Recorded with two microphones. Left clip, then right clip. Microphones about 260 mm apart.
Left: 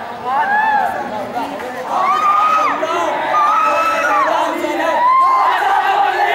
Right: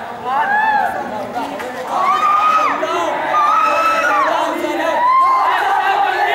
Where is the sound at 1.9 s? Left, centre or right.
Centre.